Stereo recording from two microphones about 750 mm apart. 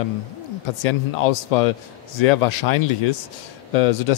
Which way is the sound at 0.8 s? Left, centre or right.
Left.